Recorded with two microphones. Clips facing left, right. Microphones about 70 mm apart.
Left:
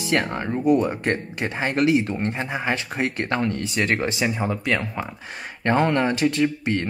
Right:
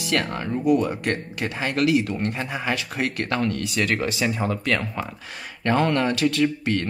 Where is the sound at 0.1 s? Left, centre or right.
Left.